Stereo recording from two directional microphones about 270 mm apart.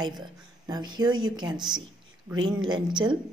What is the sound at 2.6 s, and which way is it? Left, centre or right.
Speech, centre.